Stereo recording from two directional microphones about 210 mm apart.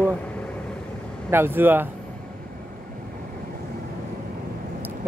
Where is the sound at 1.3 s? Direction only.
10° right (ahead or behind).